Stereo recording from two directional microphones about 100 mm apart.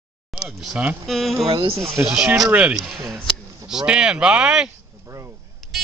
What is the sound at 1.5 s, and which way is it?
Speech, 65° right (ahead or behind).